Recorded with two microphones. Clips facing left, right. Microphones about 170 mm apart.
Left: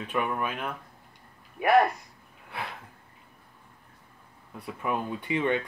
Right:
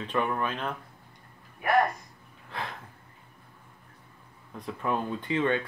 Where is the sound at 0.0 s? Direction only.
10° left (ahead or behind).